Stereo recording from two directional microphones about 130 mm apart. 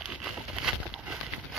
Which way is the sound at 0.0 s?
Centre (ahead or behind).